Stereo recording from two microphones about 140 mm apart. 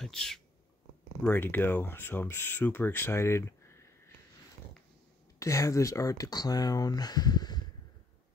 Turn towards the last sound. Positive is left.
turn(degrees=30)  # may be behind; listen again after turning